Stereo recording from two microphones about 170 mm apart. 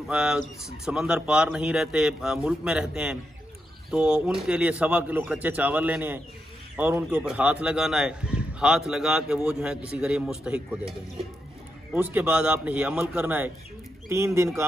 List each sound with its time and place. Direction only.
0.1 s a man's voice: 5° right (ahead or behind)
11.9 s speech: 10° right (ahead or behind)